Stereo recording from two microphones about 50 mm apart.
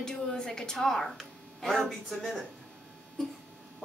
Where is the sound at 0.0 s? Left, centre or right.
Centre.